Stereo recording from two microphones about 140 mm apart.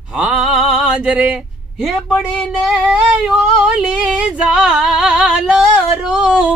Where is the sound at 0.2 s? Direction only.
5° right (ahead or behind).